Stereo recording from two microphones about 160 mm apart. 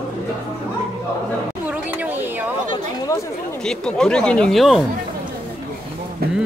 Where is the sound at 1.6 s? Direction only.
10° right (ahead or behind).